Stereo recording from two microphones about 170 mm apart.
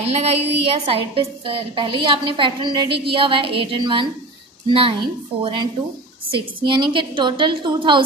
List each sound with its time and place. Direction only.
0.0 s a woman's voice: 40° right (ahead or behind)